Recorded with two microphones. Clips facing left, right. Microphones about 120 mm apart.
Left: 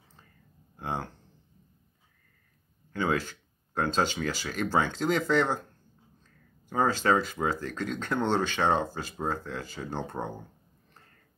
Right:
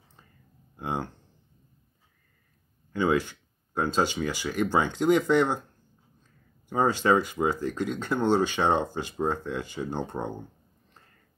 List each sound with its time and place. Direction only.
0.7 s speech: 15° right (ahead or behind)
2.9 s speech: 15° right (ahead or behind)
6.7 s speech: 15° right (ahead or behind)